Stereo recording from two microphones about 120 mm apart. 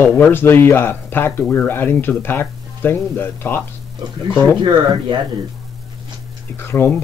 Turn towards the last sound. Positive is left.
turn(degrees=20)  # may be behind; listen again after turning